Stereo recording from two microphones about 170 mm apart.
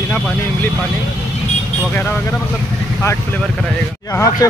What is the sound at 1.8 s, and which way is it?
Speech, 10° left (ahead or behind).